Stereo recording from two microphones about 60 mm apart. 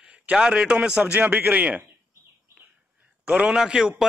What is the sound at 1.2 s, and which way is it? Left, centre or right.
Speech, right.